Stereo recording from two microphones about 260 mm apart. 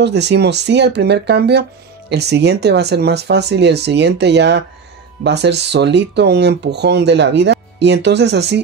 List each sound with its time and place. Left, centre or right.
0.0 s speech: right